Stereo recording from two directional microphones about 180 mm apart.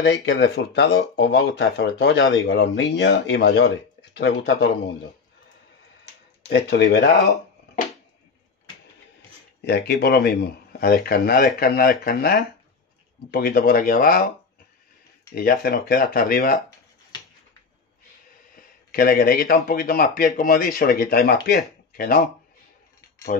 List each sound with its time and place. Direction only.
0.0 s speech: 75° left (ahead or behind)
6.5 s speech: 70° left (ahead or behind)
9.7 s speech: 65° left (ahead or behind)
15.3 s speech: 55° left (ahead or behind)
18.6 s speech: 55° left (ahead or behind)